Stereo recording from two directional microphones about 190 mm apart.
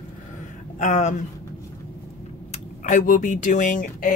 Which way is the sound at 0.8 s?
40° left (ahead or behind).